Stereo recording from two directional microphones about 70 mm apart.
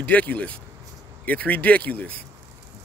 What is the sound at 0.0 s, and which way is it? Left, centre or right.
Speech, left.